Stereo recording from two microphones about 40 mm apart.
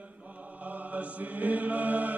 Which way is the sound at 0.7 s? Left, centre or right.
Right.